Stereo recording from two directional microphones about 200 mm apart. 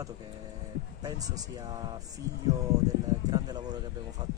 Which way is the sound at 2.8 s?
20° right (ahead or behind).